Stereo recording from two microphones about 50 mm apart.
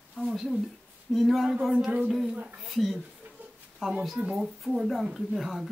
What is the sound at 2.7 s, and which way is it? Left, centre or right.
Speech, centre.